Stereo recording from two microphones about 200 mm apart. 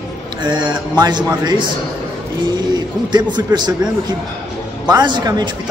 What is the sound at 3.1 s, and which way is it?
A man's voice, 20° right (ahead or behind).